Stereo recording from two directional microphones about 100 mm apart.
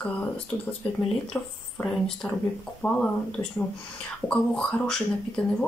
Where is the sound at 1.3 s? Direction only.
20° left (ahead or behind).